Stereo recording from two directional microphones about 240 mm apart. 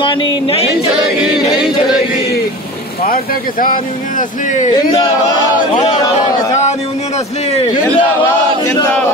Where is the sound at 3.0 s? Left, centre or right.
Left.